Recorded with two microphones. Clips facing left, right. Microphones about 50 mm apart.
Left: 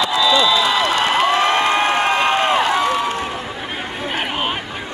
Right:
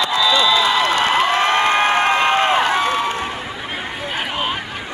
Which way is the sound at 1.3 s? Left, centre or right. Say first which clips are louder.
Even; right.